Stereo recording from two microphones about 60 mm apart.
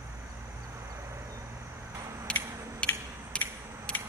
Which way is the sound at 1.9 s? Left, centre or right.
Right.